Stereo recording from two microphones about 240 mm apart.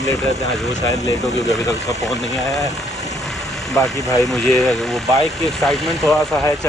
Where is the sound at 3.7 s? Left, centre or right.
Centre.